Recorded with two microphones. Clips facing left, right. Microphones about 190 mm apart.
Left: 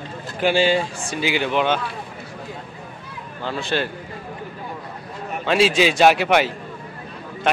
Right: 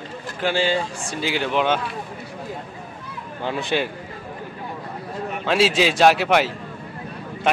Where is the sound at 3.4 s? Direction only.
15° right (ahead or behind).